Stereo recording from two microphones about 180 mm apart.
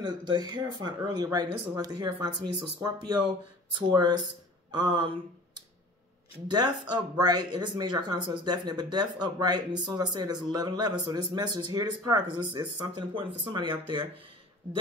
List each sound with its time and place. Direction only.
0.0 s speech: 25° right (ahead or behind)
6.4 s speech: 25° right (ahead or behind)